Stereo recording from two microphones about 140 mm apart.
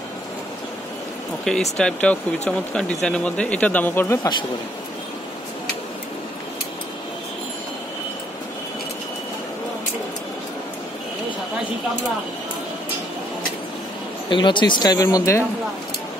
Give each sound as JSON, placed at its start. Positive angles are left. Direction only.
{"t": 1.8, "sound": "speech", "side_deg": 5}
{"t": 14.3, "sound": "speech", "side_deg": 35}